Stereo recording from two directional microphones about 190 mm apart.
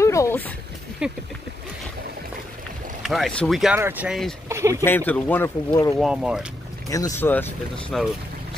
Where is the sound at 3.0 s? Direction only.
Centre (ahead or behind).